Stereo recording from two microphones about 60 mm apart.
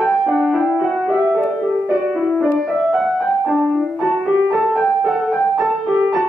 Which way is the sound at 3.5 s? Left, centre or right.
Centre.